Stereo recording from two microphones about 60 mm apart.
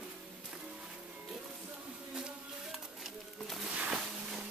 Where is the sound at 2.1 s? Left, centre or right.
Centre.